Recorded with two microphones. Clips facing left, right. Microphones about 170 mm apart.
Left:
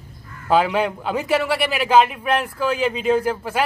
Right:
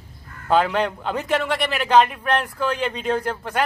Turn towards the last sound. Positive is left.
turn(degrees=5)  # may be behind; listen again after turning